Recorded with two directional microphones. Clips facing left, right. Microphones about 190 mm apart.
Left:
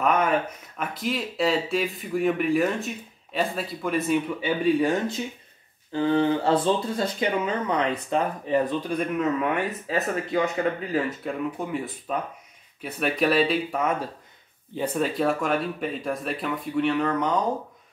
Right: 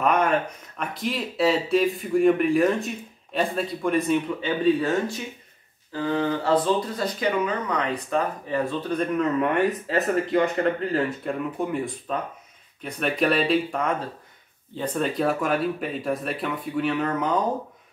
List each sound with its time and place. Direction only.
0.7 s speech: centre (ahead or behind)
4.7 s speech: 20° left (ahead or behind); by 17.4 s centre (ahead or behind)